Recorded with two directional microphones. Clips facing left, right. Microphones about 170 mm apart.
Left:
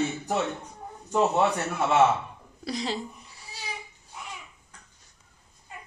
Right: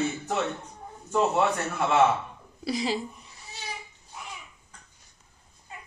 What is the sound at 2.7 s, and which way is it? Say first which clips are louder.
Speech: right 3 dB; 5° right (ahead or behind).